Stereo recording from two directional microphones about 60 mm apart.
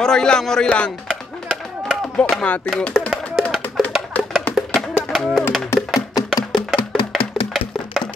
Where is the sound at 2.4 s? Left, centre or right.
Left.